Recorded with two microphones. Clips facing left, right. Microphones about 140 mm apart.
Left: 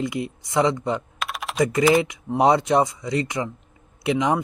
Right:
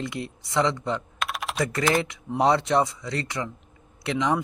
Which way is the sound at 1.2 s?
Centre (ahead or behind).